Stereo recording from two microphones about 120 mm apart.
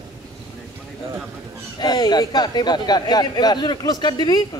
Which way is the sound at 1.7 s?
35° left (ahead or behind).